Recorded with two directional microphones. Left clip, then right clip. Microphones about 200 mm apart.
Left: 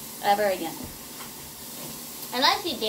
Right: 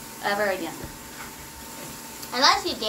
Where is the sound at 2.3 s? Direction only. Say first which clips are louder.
Right 3 dB; 15° left (ahead or behind).